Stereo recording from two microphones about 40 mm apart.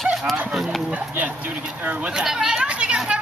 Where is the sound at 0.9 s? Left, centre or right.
Right.